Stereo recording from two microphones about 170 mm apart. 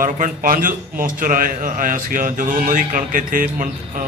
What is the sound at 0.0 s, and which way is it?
A man's voice, 55° right (ahead or behind).